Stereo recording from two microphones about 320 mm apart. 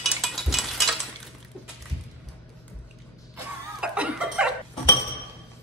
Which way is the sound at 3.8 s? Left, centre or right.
Centre.